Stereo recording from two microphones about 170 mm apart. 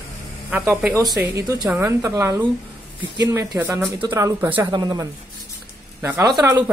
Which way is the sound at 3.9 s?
20° right (ahead or behind).